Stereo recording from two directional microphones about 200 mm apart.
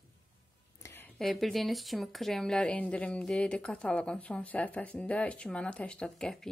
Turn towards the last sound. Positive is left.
turn(degrees=5)  # may be behind; listen again after turning